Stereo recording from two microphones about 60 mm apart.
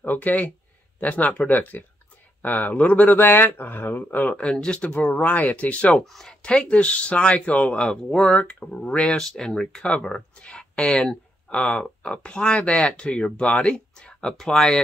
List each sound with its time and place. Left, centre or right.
0.0 s speech: left
4.8 s speech: left
6.1 s speech: centre
6.5 s speech: left
8.4 s speech: left
9.1 s speech: centre